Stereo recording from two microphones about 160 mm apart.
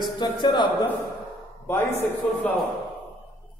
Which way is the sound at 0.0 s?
30° left (ahead or behind).